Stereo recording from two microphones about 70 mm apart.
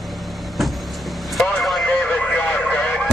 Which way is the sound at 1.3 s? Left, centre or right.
Centre.